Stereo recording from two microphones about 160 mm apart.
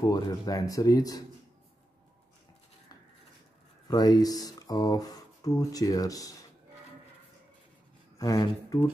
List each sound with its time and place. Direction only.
0.0 s speech: 25° left (ahead or behind)
3.9 s speech: 25° left (ahead or behind)
8.2 s speech: 20° left (ahead or behind)